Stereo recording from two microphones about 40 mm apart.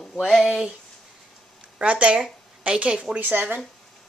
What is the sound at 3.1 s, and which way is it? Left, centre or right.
Speech, right.